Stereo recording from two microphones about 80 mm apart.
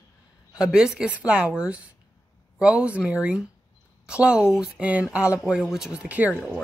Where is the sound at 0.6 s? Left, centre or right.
Centre.